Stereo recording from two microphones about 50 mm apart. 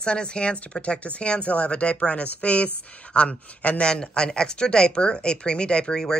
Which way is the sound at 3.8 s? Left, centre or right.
Centre.